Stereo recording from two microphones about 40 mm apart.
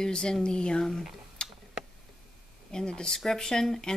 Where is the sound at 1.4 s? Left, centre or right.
Left.